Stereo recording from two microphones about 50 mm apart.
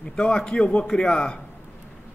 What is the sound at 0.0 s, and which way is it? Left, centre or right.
A man's voice, centre.